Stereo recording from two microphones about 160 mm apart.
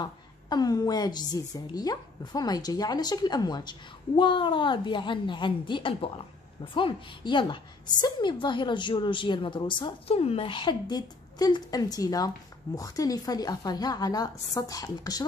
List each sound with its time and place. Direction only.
0.0 s a woman's voice: 25° left (ahead or behind)